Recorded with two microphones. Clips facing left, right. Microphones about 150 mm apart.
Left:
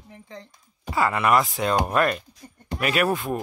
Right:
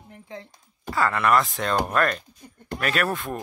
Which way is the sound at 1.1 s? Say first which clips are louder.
Even; 5° left (ahead or behind).